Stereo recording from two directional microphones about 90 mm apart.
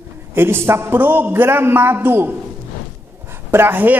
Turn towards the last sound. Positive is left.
turn(degrees=-20)  # may be behind; listen again after turning